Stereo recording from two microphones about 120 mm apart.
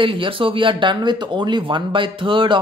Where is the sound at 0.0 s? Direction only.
45° right (ahead or behind).